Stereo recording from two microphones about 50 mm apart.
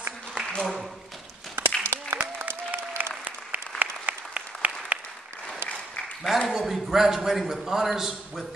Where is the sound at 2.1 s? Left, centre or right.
Right.